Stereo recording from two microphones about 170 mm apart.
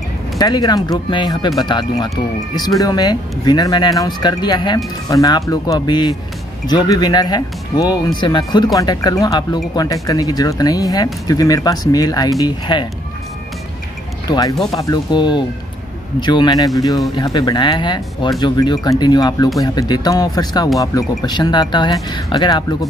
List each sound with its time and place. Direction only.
0.4 s speech: 25° left (ahead or behind)
14.7 s speech: 25° left (ahead or behind)